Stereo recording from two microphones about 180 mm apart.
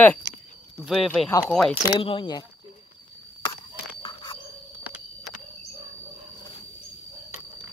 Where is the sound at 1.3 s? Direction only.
15° left (ahead or behind).